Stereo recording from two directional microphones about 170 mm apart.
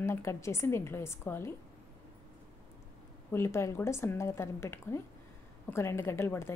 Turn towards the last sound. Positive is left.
turn(degrees=15)  # may be behind; listen again after turning